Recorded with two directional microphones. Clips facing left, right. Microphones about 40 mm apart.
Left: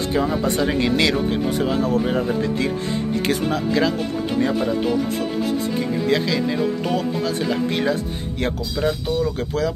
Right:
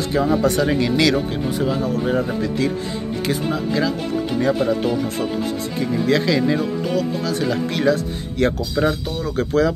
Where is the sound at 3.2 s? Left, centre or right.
Left.